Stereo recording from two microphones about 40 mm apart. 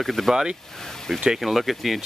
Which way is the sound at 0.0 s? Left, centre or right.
Centre.